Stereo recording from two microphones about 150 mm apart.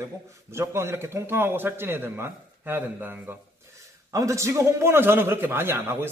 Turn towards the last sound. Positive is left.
turn(degrees=-15)  # may be behind; listen again after turning